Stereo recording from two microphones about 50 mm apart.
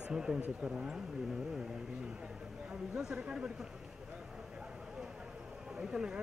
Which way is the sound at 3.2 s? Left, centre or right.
Right.